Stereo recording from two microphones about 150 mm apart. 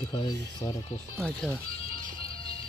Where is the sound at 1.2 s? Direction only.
5° left (ahead or behind).